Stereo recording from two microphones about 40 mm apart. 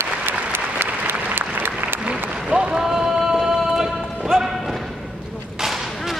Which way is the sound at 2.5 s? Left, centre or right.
Right.